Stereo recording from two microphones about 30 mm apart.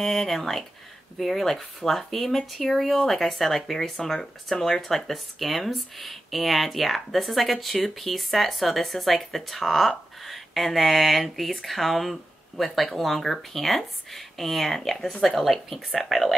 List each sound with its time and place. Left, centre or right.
0.0 s speech: centre
3.9 s speech: centre